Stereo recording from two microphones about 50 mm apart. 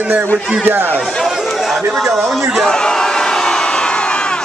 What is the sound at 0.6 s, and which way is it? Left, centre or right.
Speech, right.